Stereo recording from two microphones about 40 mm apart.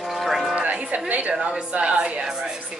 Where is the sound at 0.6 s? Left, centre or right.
Right.